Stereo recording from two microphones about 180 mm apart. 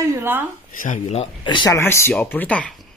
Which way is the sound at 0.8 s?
45° left (ahead or behind).